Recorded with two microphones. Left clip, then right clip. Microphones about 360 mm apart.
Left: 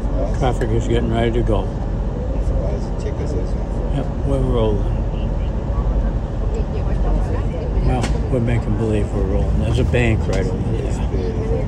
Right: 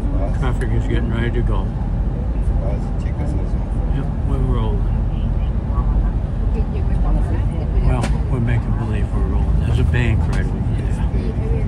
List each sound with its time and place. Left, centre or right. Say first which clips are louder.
0.4 s speech: left 6 dB; centre
9.8 s speech: left 5 dB; centre